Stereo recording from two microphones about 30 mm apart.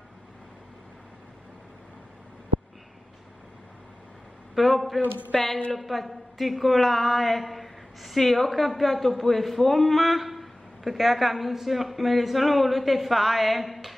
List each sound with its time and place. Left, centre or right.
4.6 s a woman's voice: centre
5.3 s a woman's voice: centre
5.8 s a woman's voice: centre